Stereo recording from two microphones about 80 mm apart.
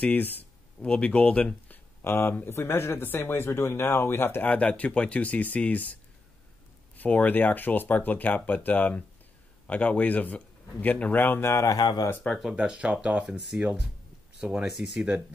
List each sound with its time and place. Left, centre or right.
0.0 s speech: left
2.0 s speech: left
7.0 s speech: centre
11.7 s speech: left
12.1 s speech: centre
12.4 s speech: centre